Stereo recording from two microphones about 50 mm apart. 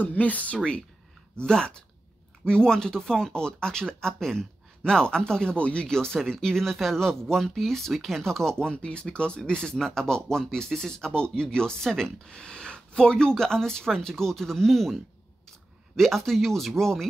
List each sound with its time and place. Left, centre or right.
0.0 s speech: left
0.6 s speech: centre
16.0 s speech: centre